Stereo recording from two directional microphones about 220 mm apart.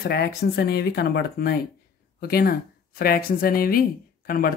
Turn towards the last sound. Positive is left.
turn(degrees=40)  # may be behind; listen again after turning